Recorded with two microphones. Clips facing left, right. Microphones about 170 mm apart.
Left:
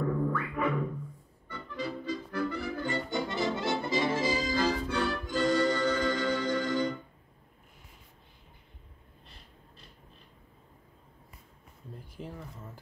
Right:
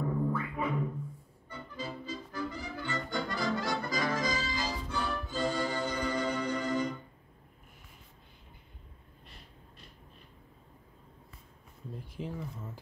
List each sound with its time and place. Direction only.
0.0 s music: 70° left (ahead or behind)
3.1 s music: 20° left (ahead or behind)
4.5 s music: 60° left (ahead or behind); by 7.0 s 90° left
12.2 s a sound: 5° right (ahead or behind)